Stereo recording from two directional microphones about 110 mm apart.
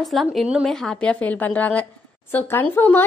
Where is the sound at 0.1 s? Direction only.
Centre (ahead or behind).